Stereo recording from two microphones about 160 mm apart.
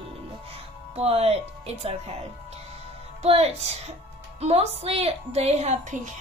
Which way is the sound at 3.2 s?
40° right (ahead or behind).